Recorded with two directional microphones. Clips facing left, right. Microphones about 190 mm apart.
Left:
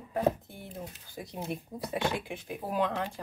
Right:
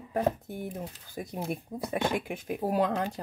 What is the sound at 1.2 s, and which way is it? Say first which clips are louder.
Speech: right 3 dB; 50° right (ahead or behind).